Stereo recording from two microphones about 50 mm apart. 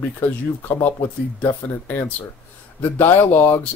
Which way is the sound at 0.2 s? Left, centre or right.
Left.